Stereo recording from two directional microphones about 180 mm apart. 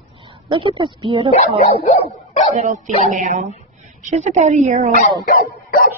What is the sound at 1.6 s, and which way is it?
Dog, 35° left (ahead or behind).